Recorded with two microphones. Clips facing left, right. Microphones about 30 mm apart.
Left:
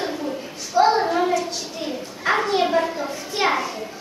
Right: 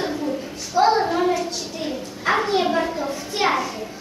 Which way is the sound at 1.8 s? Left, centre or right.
Centre.